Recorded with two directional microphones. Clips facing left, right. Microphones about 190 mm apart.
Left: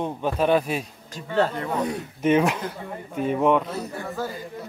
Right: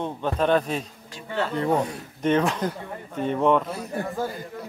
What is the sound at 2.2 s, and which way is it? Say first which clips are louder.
Speech: left 1 dB; 10° left (ahead or behind).